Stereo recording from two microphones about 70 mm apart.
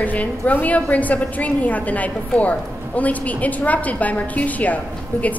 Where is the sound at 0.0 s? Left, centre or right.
Left.